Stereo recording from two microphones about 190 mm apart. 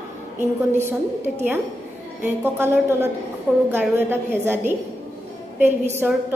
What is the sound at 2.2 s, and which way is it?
A woman's voice, 10° right (ahead or behind).